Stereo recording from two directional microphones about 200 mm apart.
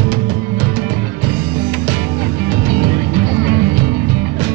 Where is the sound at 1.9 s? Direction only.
50° right (ahead or behind).